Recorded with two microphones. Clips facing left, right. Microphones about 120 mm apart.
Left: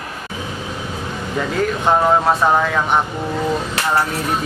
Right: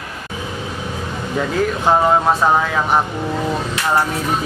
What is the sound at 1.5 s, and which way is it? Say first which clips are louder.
Speech: right 1 dB; centre (ahead or behind).